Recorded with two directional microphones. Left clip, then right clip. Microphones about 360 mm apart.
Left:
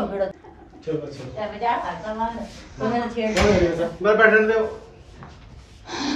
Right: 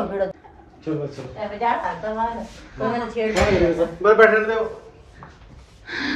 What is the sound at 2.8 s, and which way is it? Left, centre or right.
A woman's voice, right.